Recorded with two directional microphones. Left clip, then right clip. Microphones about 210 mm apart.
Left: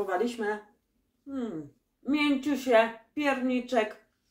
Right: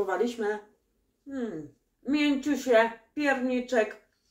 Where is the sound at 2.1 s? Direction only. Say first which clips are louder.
Right 1 dB; 5° right (ahead or behind).